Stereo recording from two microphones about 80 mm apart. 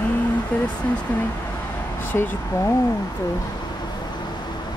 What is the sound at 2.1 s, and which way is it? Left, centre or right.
Speech, left.